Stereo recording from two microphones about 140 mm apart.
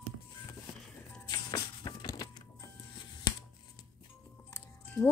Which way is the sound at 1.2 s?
30° left (ahead or behind).